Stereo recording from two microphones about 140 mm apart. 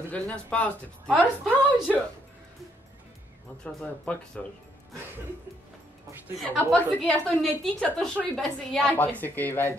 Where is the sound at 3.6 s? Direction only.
5° left (ahead or behind).